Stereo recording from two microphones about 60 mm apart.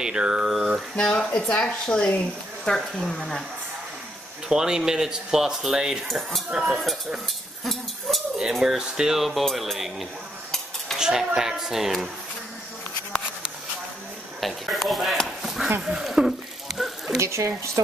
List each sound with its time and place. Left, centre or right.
0.0 s speech: centre
0.9 s speech: centre
4.5 s speech: centre
14.4 s speech: centre
15.2 s a sound: centre
17.2 s speech: right